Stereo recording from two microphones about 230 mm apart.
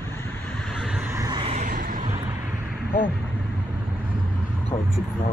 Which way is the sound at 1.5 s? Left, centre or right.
Right.